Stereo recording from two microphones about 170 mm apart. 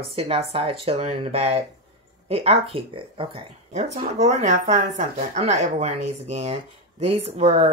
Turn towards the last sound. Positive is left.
turn(degrees=-40)  # may be behind; listen again after turning